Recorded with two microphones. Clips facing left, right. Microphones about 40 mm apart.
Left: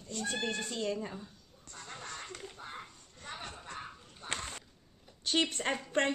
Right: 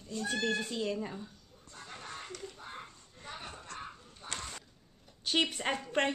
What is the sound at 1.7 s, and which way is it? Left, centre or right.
Music, centre.